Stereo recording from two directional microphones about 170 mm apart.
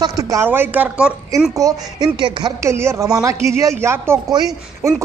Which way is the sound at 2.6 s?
15° right (ahead or behind).